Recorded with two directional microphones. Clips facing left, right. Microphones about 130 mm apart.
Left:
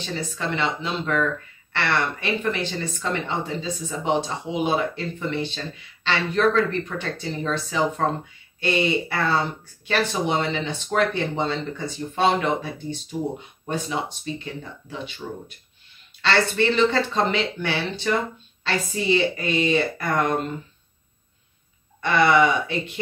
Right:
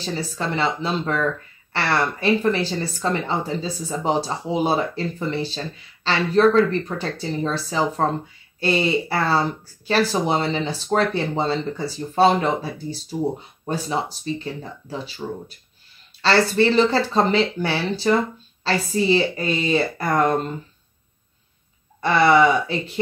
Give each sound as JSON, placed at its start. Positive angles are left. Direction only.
{"t": 0.0, "sound": "speech", "side_deg": -35}
{"t": 22.0, "sound": "speech", "side_deg": -35}